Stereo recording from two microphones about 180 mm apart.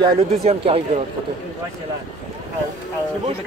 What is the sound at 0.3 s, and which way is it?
Speech, 35° right (ahead or behind).